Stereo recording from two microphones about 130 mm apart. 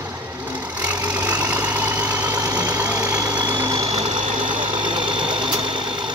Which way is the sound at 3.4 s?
30° right (ahead or behind).